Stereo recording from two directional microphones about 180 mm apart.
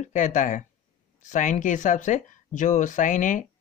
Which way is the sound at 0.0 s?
45° left (ahead or behind).